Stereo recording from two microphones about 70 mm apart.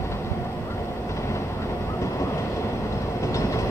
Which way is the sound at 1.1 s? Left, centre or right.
Left.